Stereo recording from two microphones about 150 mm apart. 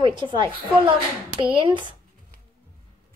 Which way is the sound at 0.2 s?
35° right (ahead or behind).